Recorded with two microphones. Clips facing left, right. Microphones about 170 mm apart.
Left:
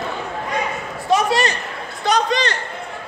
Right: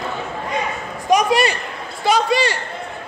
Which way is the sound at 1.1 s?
10° right (ahead or behind).